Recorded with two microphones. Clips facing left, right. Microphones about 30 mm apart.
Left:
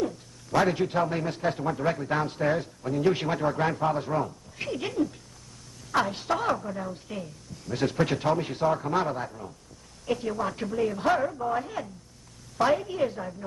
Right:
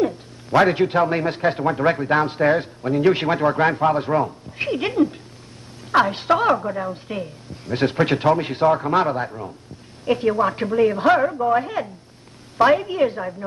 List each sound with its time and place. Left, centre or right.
0.0 s a man's voice: right